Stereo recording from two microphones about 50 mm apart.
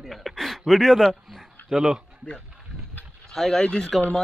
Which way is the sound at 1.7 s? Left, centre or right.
Centre.